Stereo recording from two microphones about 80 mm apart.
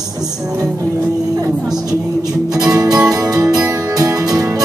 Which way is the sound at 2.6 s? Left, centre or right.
Right.